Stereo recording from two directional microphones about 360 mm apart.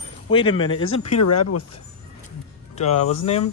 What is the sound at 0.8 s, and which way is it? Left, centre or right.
Speech, left.